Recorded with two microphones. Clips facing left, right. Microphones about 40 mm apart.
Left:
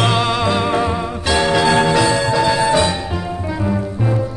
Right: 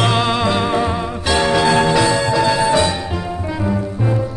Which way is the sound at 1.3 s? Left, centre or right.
Left.